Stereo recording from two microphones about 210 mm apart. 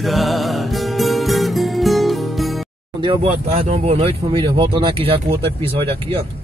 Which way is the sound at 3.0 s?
25° right (ahead or behind).